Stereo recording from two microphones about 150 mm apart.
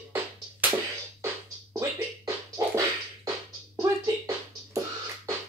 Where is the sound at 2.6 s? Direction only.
25° right (ahead or behind).